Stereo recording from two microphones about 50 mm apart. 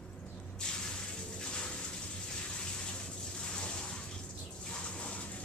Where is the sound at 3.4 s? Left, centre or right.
Centre.